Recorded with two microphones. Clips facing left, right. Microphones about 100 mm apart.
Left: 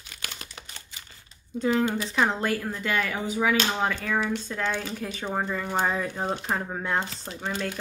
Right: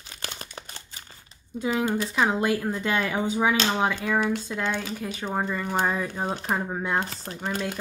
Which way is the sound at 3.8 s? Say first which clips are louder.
Right 2 dB; 10° right (ahead or behind).